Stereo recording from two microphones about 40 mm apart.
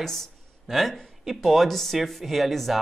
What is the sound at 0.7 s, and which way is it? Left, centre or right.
Speech, centre.